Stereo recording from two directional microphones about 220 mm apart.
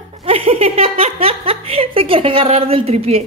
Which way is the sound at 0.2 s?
25° right (ahead or behind).